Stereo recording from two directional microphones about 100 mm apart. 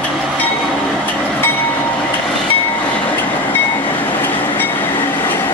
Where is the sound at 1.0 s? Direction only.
20° left (ahead or behind).